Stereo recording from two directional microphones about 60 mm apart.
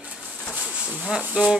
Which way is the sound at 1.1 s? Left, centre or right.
Centre.